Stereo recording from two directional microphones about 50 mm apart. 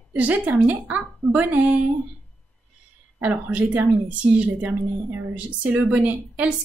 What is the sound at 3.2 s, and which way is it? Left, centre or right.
Speech, right.